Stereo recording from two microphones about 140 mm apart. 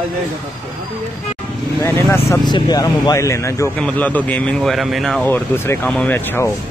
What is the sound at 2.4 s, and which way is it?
Speech, 30° left (ahead or behind).